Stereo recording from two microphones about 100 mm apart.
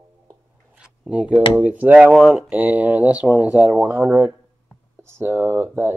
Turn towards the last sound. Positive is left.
turn(degrees=-25)  # may be behind; listen again after turning